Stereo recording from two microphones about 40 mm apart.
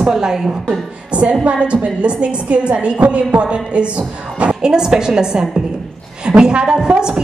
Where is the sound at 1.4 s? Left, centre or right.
Right.